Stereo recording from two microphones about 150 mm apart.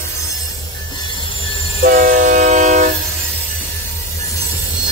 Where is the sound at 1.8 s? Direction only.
60° right (ahead or behind).